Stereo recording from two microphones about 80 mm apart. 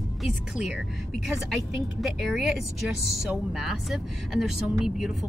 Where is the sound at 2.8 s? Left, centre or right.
Centre.